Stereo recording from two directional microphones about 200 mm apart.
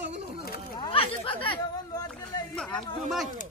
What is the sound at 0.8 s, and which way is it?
Speech, 25° left (ahead or behind).